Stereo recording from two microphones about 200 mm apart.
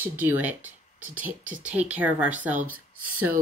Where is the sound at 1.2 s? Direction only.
40° right (ahead or behind).